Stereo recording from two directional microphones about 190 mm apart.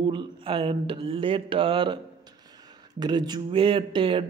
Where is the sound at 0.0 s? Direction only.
25° right (ahead or behind).